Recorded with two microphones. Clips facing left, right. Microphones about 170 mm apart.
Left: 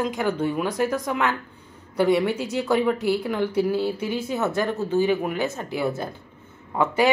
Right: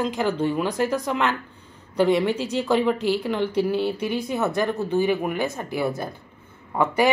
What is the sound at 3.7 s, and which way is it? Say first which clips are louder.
Speech: right 1 dB; 20° right (ahead or behind).